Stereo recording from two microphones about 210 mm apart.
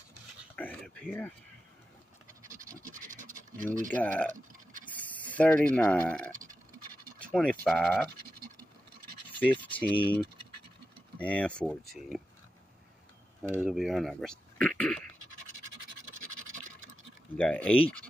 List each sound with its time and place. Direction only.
0.6 s a sound: 5° left (ahead or behind)
2.7 s scratch: 40° right (ahead or behind)
3.9 s speech: 10° left (ahead or behind)
4.8 s a sound: 5° left (ahead or behind)
5.4 s speech: 5° left (ahead or behind)
9.4 s speech: 5° left (ahead or behind)
13.4 s speech: 5° right (ahead or behind)
16.3 s scratch: 35° right (ahead or behind)
17.4 s speech: 5° left (ahead or behind)